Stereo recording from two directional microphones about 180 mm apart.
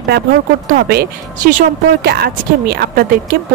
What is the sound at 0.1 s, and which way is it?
Speech, 55° right (ahead or behind).